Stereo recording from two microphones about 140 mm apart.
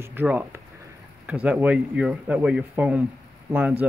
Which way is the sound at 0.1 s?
15° right (ahead or behind).